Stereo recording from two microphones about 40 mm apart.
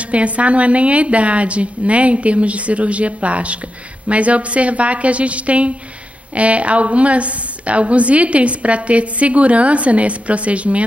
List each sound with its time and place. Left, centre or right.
0.1 s a woman's voice: right